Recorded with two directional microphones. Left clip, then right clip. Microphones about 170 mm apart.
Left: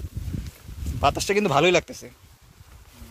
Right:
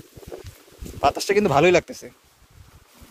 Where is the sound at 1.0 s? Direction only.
35° right (ahead or behind).